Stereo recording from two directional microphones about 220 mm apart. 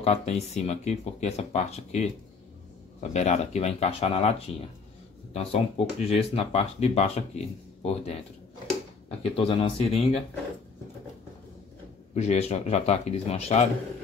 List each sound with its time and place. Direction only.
0.0 s speech: 30° left (ahead or behind)
9.2 s speech: 25° left (ahead or behind)
12.1 s speech: 30° left (ahead or behind)